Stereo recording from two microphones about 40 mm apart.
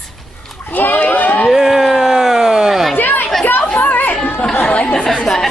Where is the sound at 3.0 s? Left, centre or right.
Left.